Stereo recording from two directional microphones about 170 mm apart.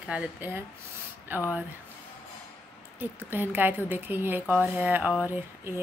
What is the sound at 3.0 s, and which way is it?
A woman's voice, 10° right (ahead or behind).